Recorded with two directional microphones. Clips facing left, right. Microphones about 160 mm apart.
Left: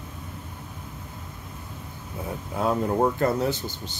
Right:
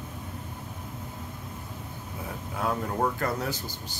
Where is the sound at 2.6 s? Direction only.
25° left (ahead or behind).